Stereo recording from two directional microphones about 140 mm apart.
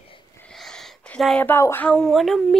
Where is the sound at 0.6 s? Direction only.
5° left (ahead or behind).